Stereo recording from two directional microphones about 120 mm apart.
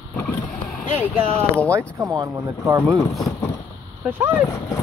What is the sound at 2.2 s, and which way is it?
Speech, 25° right (ahead or behind).